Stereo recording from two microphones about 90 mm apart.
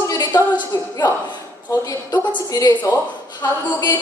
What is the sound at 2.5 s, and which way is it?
Speech, 40° left (ahead or behind).